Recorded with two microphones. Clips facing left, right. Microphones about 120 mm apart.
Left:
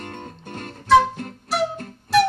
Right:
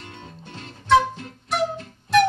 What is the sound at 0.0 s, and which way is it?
Music, 50° left (ahead or behind).